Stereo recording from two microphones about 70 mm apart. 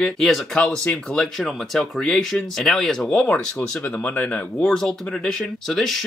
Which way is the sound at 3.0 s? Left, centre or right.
Centre.